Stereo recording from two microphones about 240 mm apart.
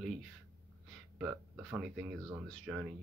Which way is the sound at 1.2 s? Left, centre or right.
Centre.